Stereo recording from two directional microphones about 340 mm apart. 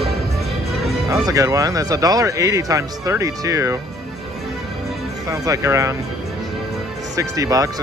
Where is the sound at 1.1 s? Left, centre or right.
Centre.